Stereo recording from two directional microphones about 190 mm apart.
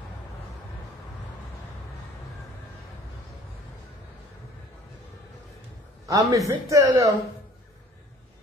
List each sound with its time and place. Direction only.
6.0 s a man's voice: 15° right (ahead or behind)